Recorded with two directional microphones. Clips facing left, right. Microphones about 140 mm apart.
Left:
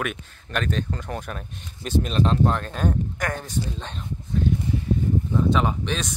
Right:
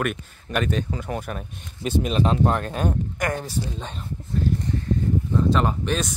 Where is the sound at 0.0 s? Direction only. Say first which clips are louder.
Right 3 dB; 5° right (ahead or behind).